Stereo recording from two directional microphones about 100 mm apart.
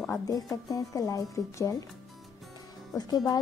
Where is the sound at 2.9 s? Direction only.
40° left (ahead or behind).